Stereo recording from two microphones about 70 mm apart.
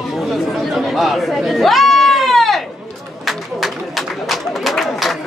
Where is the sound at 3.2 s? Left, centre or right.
Centre.